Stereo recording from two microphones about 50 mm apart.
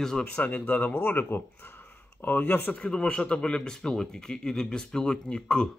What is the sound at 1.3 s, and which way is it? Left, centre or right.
Speech, left.